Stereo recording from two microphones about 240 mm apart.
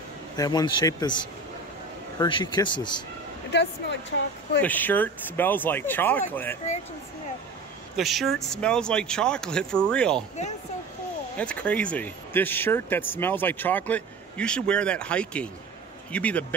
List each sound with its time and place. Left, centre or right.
0.4 s speech: centre
2.1 s speech: centre
4.6 s speech: centre
7.9 s speech: centre
11.3 s speech: centre